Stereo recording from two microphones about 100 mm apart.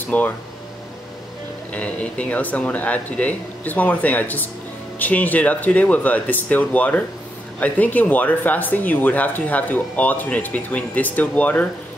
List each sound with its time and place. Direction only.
0.1 s speech: 15° left (ahead or behind)
1.7 s speech: 15° left (ahead or behind)